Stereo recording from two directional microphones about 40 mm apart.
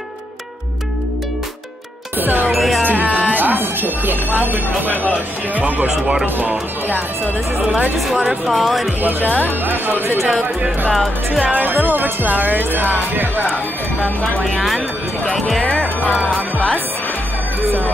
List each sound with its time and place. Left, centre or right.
2.1 s music: right
2.5 s music: centre
2.8 s music: right
4.4 s speech: right
6.2 s speech: right
7.6 s speech: right
8.5 s speech: centre
9.2 s speech: left
9.7 s speech: right
10.9 s speech: centre
11.5 s speech: right
15.3 s speech: centre